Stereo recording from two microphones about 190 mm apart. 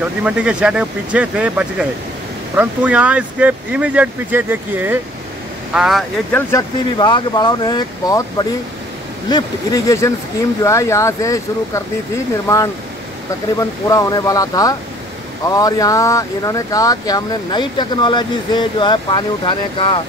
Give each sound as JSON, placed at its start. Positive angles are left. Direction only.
{"t": 0.2, "sound": "speech", "side_deg": -5}
{"t": 7.0, "sound": "speech", "side_deg": 25}
{"t": 13.6, "sound": "speech", "side_deg": 15}